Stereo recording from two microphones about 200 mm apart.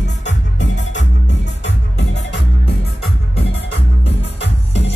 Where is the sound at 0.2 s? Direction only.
65° left (ahead or behind).